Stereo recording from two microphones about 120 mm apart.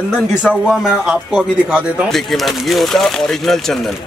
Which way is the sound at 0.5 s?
5° right (ahead or behind).